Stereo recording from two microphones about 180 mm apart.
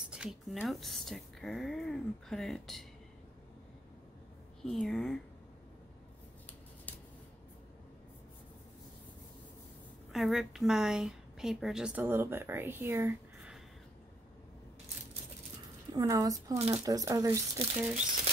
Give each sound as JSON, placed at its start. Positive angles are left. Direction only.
{"t": 0.1, "sound": "a woman's voice", "side_deg": -5}
{"t": 4.6, "sound": "a woman's voice", "side_deg": 5}
{"t": 10.1, "sound": "a woman's voice", "side_deg": 0}
{"t": 15.9, "sound": "speech", "side_deg": -20}